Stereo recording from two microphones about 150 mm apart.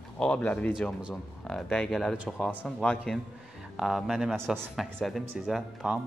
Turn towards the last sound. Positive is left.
turn(degrees=-5)  # may be behind; listen again after turning